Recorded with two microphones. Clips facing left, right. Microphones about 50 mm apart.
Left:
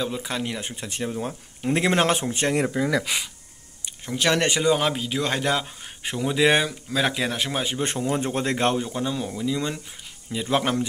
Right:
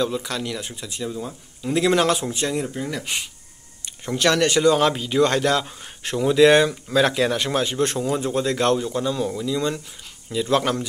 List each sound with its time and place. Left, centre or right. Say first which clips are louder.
0.0 s speech: right 3 dB; centre; by 1.8 s left
1.8 s speech: right 3 dB; left
2.5 s speech: left 3 dB; left
4.0 s speech: right 3 dB; centre
8.1 s speech: right 2 dB; left; by 10.9 s centre